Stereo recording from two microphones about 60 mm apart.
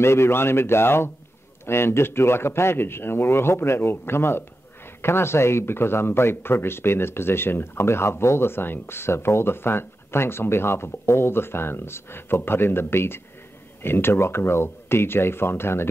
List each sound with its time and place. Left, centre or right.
0.0 s speech: left